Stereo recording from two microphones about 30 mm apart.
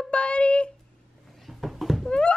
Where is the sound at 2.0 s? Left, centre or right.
Left.